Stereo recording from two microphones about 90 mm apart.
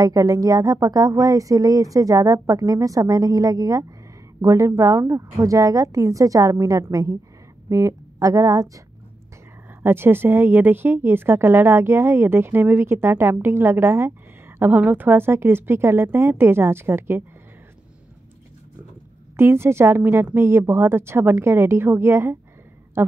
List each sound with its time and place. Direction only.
0.0 s speech: 40° right (ahead or behind)
9.8 s speech: 25° right (ahead or behind)
19.3 s speech: 30° right (ahead or behind)